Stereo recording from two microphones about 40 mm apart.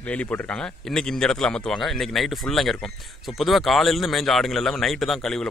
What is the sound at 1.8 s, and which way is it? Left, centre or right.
Speech, centre.